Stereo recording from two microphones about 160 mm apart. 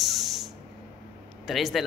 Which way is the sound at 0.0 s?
Centre (ahead or behind).